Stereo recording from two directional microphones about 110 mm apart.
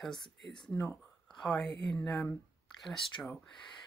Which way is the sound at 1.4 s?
5° left (ahead or behind).